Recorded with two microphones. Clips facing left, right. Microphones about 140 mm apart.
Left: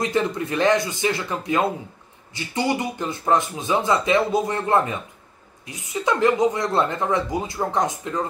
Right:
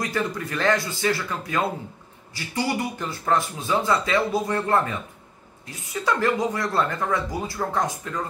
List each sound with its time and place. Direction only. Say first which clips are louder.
0.0 s speech: left 4 dB; 25° left (ahead or behind)